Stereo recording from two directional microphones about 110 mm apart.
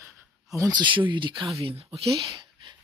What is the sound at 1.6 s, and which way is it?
Speech, 60° right (ahead or behind).